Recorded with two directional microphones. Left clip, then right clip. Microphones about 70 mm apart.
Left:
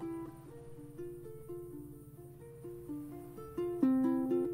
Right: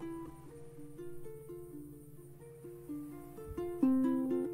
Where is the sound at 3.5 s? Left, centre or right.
Right.